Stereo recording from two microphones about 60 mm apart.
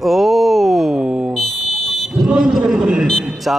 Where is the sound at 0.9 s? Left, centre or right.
Centre.